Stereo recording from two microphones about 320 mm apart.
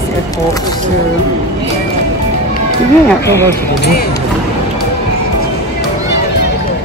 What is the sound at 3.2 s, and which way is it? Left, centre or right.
Speech, centre.